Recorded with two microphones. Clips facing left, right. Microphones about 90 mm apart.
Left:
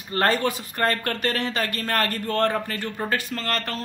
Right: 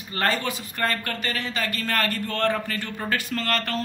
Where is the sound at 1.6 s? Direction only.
45° left (ahead or behind).